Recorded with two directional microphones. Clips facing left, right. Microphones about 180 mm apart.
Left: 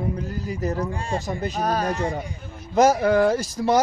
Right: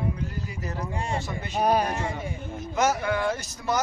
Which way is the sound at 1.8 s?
35° left (ahead or behind).